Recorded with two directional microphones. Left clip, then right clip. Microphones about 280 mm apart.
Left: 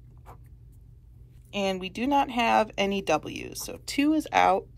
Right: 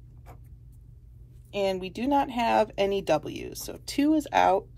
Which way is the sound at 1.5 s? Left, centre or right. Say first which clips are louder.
Right 1 dB; left.